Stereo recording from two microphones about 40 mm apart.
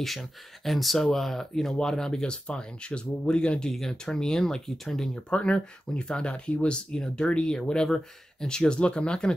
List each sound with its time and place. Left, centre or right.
0.0 s speech: centre
5.3 s speech: left